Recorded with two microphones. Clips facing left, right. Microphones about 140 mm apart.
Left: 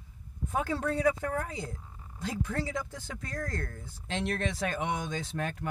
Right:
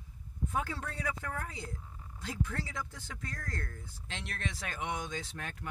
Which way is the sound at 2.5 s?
30° left (ahead or behind).